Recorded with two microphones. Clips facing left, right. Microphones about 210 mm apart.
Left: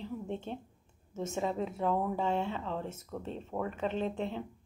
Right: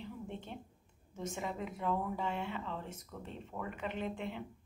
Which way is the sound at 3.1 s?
60° left (ahead or behind).